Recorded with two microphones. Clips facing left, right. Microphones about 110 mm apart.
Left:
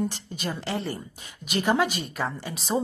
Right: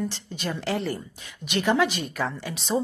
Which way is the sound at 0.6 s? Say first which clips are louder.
Right 3 dB; centre (ahead or behind).